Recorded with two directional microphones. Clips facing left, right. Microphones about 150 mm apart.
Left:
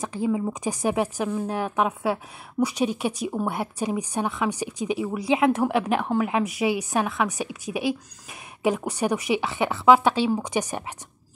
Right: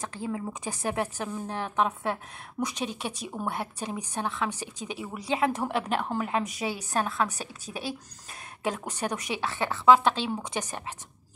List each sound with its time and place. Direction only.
0.0 s a woman's voice: 15° left (ahead or behind)